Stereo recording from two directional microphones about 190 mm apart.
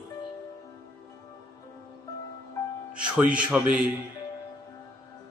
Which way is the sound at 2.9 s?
5° right (ahead or behind).